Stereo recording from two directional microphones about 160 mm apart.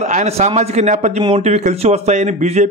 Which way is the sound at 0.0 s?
45° right (ahead or behind).